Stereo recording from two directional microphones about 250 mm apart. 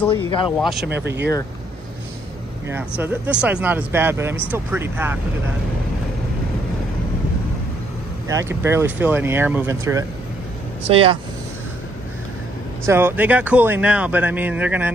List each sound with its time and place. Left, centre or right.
0.6 s speech: centre
0.8 s speech: right
2.7 s speech: centre
8.3 s speech: centre
10.9 s speech: right
12.8 s speech: centre